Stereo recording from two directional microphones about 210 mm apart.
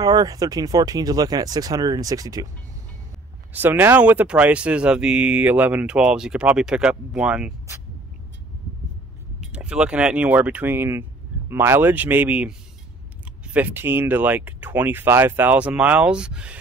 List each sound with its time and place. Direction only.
0.0 s speech: 15° right (ahead or behind)
3.5 s speech: 10° right (ahead or behind)
9.4 s speech: 5° right (ahead or behind)